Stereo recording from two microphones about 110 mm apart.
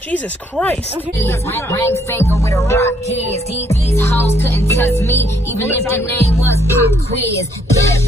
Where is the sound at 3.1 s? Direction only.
75° left (ahead or behind).